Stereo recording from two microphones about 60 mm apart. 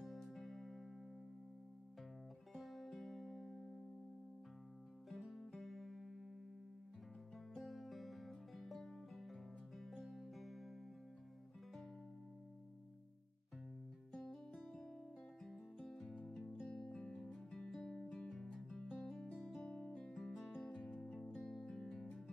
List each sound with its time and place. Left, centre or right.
0.0 s music: centre
2.5 s music: centre
5.1 s music: centre
7.5 s music: centre
14.1 s music: centre
16.7 s music: centre